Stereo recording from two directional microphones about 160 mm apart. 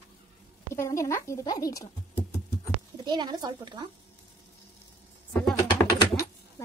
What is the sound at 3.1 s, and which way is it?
Speech, 25° right (ahead or behind).